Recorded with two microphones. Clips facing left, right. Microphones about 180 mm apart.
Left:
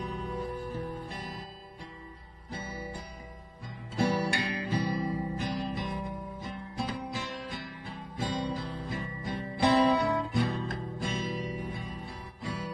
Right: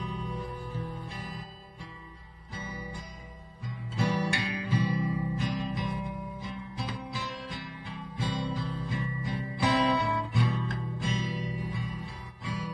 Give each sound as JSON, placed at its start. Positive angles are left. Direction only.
{"t": 0.7, "sound": "music", "side_deg": 40}
{"t": 3.9, "sound": "music", "side_deg": 40}
{"t": 7.6, "sound": "music", "side_deg": 40}